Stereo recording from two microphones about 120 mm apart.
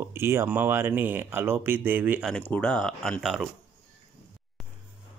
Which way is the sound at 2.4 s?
10° left (ahead or behind).